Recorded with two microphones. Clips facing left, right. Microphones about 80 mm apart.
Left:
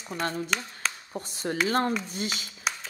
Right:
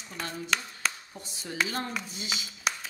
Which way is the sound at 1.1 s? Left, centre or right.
Left.